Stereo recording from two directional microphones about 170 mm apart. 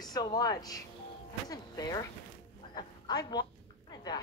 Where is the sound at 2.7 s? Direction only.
25° left (ahead or behind).